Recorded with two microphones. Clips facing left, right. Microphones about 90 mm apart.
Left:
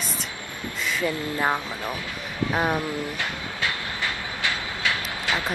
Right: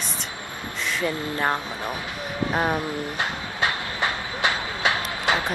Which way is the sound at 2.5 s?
15° right (ahead or behind).